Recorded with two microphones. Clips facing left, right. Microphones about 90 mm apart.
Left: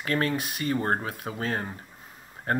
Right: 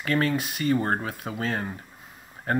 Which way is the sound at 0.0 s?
35° left (ahead or behind).